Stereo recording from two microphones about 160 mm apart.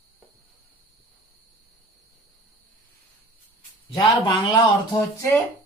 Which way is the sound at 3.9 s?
25° left (ahead or behind).